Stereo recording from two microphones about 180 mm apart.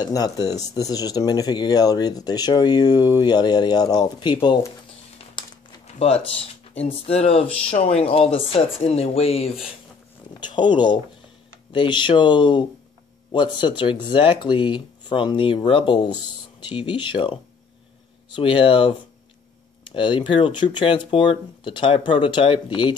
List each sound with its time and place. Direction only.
0.0 s speech: 20° left (ahead or behind)
5.3 s a sound: 30° left (ahead or behind)
6.8 s speech: 35° left (ahead or behind)